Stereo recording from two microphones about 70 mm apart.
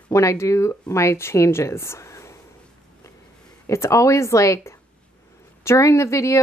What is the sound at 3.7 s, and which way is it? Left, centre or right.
A woman's voice, left.